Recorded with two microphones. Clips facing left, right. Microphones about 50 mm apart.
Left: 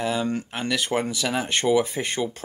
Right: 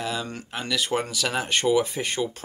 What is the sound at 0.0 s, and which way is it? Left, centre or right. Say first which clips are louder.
Speech: left 5 dB; left.